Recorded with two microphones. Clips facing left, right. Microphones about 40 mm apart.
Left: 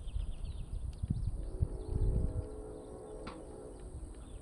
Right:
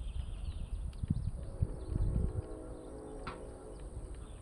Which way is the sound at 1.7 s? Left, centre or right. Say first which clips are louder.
Left 2 dB; centre.